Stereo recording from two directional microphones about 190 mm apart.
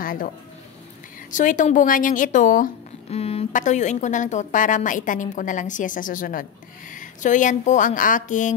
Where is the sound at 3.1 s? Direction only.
30° left (ahead or behind).